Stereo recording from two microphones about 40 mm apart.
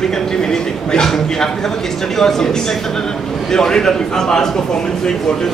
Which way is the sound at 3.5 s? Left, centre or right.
Centre.